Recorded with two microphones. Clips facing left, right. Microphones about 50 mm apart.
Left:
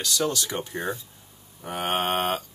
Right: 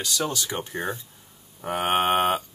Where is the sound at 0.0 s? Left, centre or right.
Centre.